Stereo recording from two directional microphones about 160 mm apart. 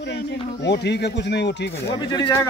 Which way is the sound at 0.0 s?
90° left.